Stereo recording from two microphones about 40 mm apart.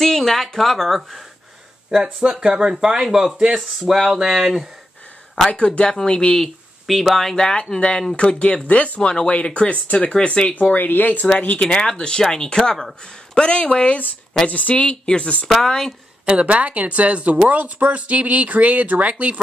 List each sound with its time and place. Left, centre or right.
0.0 s speech: centre
1.9 s speech: centre
5.6 s speech: centre
6.9 s speech: centre
7.3 s speech: left
8.6 s speech: left
10.5 s speech: left
11.7 s speech: centre
15.6 s speech: centre
16.3 s speech: right